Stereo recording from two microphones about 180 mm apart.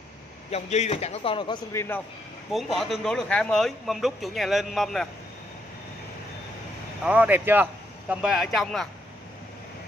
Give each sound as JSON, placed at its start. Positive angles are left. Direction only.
{"t": 0.5, "sound": "a man's voice", "side_deg": 40}
{"t": 2.5, "sound": "a man's voice", "side_deg": 0}
{"t": 7.0, "sound": "a man's voice", "side_deg": -10}